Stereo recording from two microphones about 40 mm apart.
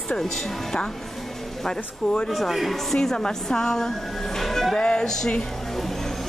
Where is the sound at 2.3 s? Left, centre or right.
Centre.